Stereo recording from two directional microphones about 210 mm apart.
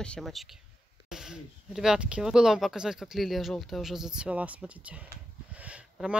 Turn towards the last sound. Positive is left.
turn(degrees=-5)  # may be behind; listen again after turning